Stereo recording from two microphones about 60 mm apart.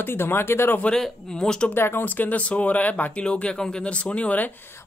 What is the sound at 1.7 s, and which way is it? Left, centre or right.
Speech, left.